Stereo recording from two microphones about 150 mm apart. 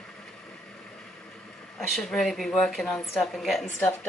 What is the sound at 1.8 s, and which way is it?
Speech, 5° left (ahead or behind).